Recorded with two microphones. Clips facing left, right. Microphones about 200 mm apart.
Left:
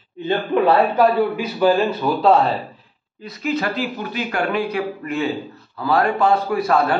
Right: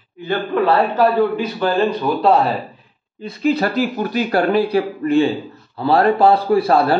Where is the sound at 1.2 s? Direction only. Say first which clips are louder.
Right 1 dB; 10° left (ahead or behind).